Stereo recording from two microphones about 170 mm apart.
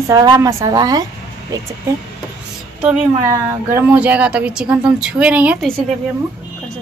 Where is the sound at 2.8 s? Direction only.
10° right (ahead or behind).